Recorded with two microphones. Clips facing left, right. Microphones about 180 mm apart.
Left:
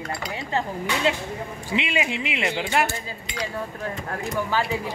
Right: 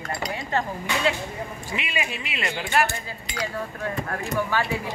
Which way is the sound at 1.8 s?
20° left (ahead or behind).